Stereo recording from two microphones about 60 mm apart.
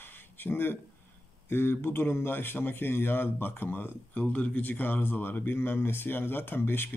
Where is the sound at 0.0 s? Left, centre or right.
Left.